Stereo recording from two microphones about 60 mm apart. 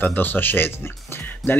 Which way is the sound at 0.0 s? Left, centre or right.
Left.